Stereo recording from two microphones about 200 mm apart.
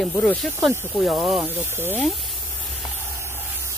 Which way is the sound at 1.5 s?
10° right (ahead or behind).